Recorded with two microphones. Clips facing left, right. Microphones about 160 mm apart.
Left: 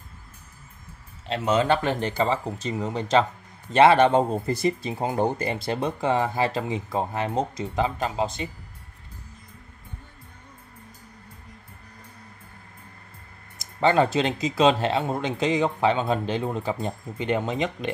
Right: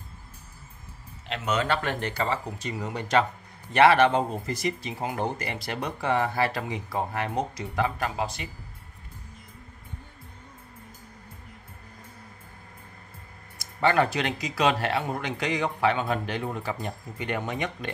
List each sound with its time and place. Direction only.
1.3 s speech: 30° left (ahead or behind)
13.6 s speech: 25° left (ahead or behind)